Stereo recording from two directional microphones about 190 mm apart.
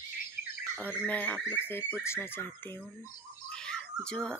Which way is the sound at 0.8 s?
10° left (ahead or behind).